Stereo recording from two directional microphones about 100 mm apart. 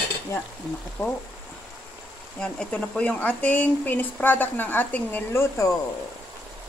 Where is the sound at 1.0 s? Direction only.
25° left (ahead or behind).